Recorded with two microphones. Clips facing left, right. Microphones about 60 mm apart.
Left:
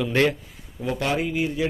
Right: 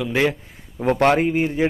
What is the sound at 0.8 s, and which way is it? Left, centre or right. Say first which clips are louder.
Speech: right 8 dB; right.